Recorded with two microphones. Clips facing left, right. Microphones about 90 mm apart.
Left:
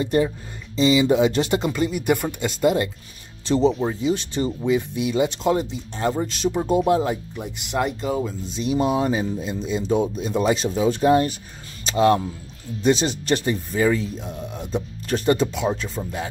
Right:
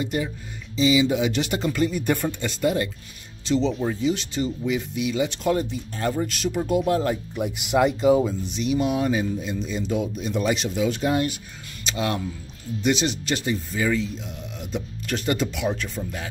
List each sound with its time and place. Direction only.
0.0 s speech: 40° left (ahead or behind); by 2.9 s 25° left (ahead or behind)
3.4 s speech: 40° left (ahead or behind)
3.8 s speech: 25° left (ahead or behind)
4.6 s speech: 25° left (ahead or behind)
7.3 s speech: 5° right (ahead or behind)
8.5 s speech: 30° left (ahead or behind)